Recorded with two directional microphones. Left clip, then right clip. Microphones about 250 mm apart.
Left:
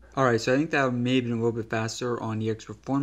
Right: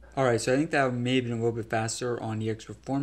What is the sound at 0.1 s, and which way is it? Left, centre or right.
Speech, centre.